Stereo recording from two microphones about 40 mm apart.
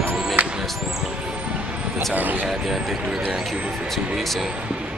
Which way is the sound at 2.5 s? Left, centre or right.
Centre.